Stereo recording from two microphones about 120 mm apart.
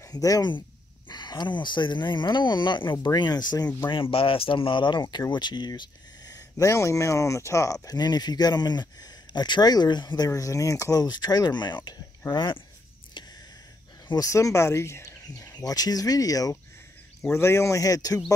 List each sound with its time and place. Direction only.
0.0 s speech: 30° left (ahead or behind)
3.9 s speech: 50° left (ahead or behind)
14.0 s speech: 30° left (ahead or behind)